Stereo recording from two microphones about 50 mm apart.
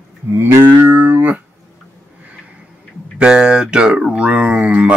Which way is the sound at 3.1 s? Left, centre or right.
Centre.